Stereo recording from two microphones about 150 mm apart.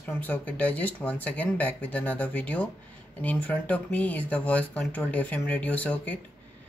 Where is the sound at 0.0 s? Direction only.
10° left (ahead or behind).